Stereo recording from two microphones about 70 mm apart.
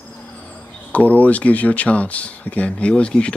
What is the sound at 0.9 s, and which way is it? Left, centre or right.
Speech, left.